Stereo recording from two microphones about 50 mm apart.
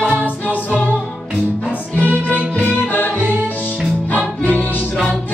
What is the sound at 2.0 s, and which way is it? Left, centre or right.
Music, left.